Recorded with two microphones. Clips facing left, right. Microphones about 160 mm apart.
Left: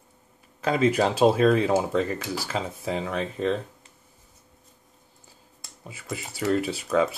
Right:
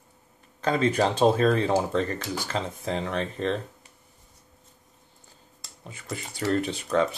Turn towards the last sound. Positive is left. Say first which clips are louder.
# left 1 dB
turn(degrees=5)  # may be behind; listen again after turning